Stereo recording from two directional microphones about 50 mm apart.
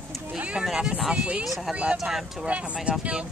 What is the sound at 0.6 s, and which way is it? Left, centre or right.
Speech, centre.